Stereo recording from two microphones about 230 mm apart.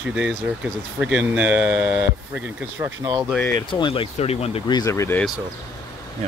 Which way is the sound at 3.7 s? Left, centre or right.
Left.